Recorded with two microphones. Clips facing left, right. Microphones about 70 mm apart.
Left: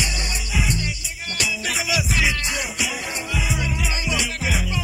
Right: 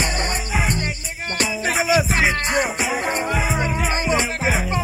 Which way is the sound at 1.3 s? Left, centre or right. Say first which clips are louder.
Right 5 dB; right.